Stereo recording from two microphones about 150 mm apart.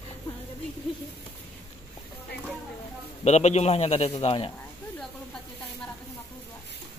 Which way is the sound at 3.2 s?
50° left (ahead or behind).